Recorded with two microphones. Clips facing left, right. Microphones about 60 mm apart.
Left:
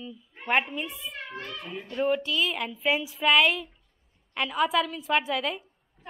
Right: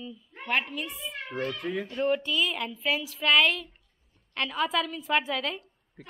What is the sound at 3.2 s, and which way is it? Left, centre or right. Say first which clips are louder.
Speech: left 1 dB; centre.